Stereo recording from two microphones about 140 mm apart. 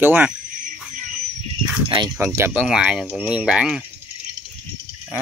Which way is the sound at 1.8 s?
35° right (ahead or behind).